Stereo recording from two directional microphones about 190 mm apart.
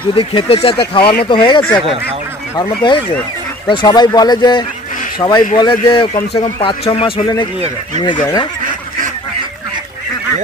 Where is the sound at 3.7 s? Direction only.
25° left (ahead or behind).